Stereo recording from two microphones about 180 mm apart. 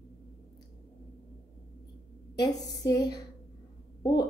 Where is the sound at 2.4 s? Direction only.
20° left (ahead or behind).